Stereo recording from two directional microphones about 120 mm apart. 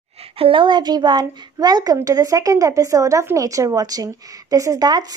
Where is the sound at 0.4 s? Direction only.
45° right (ahead or behind).